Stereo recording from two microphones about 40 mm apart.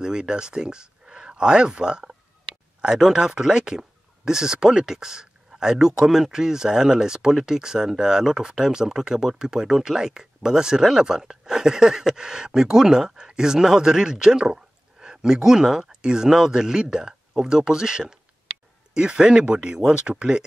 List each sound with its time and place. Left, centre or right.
0.0 s speech: centre